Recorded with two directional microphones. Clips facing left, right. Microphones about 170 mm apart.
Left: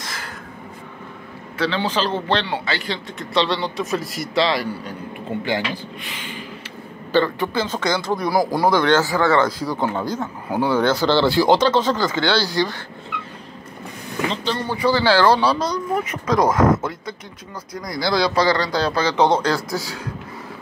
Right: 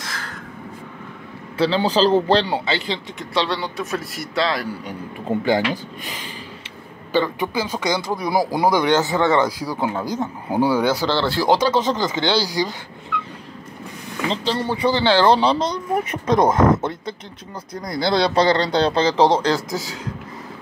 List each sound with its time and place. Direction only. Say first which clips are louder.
1.6 s speech: right 4 dB; 35° right (ahead or behind)
2.6 s speech: right 2 dB; 25° right (ahead or behind)
3.3 s a man's voice: left 2 dB; 5° right (ahead or behind)
5.3 s speech: right 5 dB; 45° right (ahead or behind)
7.1 s speech: left 2 dB; 10° right (ahead or behind)
11.5 s speech: left 1 dB; 10° right (ahead or behind)
14.3 s speech: right 2 dB; 30° right (ahead or behind)